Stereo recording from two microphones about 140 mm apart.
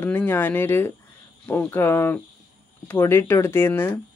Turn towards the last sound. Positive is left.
turn(degrees=15)  # may be behind; listen again after turning